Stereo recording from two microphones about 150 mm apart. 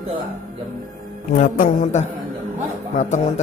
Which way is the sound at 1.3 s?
60° left (ahead or behind).